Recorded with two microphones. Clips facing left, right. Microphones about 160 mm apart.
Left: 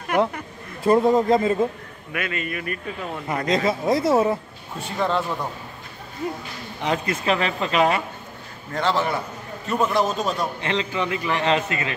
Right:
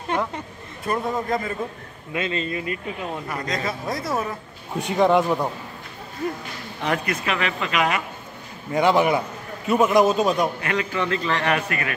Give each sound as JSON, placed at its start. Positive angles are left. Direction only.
{"t": 0.8, "sound": "a man's voice", "side_deg": 25}
{"t": 2.1, "sound": "speech", "side_deg": -25}
{"t": 3.3, "sound": "a man's voice", "side_deg": 25}
{"t": 4.7, "sound": "a man's voice", "side_deg": -15}
{"t": 6.8, "sound": "speech", "side_deg": 20}
{"t": 7.2, "sound": "speech", "side_deg": 35}
{"t": 8.7, "sound": "a man's voice", "side_deg": -15}
{"t": 10.6, "sound": "a man's voice", "side_deg": 25}